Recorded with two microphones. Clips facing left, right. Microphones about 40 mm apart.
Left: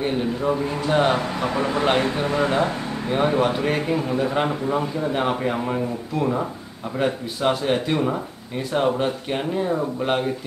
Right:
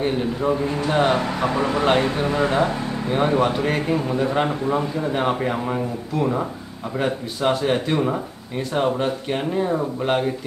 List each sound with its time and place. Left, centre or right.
0.0 s speech: centre
1.1 s speech: centre
1.6 s speech: centre